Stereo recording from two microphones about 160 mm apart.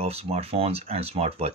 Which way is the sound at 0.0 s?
40° right (ahead or behind).